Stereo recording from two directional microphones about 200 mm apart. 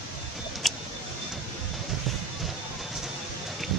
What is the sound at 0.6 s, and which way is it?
Vehicle, centre (ahead or behind).